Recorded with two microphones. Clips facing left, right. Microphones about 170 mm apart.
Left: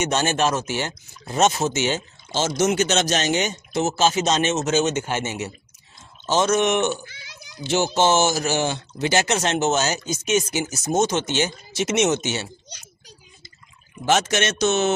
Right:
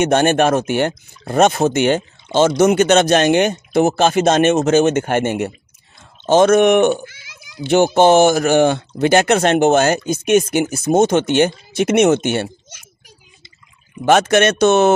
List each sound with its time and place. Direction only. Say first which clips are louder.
0.0 s speech: right 8 dB; 55° right (ahead or behind)
14.0 s speech: right 8 dB; 55° right (ahead or behind)